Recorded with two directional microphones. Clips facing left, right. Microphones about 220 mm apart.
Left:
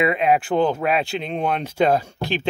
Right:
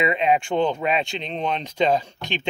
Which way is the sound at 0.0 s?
5° left (ahead or behind).